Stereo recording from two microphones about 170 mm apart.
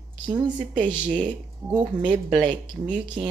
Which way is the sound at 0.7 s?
5° right (ahead or behind).